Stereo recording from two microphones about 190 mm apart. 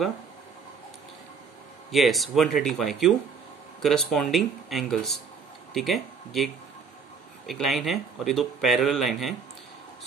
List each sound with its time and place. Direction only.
1.9 s a man's voice: centre (ahead or behind)